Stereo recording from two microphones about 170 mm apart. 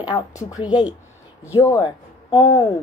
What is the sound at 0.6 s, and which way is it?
Speech, 5° right (ahead or behind).